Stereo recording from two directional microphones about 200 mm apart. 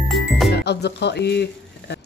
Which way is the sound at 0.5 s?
55° left (ahead or behind).